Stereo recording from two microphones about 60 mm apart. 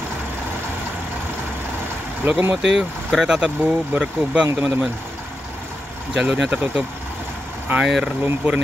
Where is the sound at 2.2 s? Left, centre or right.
Right.